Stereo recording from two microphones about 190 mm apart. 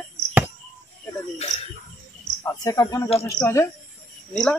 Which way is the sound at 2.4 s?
20° left (ahead or behind).